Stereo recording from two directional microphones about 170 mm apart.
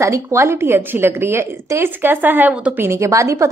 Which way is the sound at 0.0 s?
15° right (ahead or behind).